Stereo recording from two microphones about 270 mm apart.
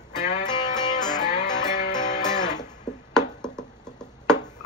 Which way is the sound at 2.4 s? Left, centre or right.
Centre.